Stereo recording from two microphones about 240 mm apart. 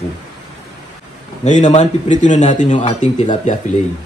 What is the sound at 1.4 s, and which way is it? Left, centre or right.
Speech, left.